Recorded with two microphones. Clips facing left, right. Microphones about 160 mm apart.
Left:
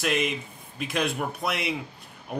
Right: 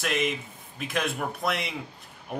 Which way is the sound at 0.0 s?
Centre (ahead or behind).